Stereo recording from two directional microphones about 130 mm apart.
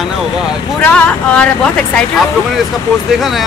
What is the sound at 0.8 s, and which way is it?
Speech, 10° left (ahead or behind).